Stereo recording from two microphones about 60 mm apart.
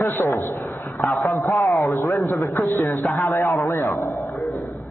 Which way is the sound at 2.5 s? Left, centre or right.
Left.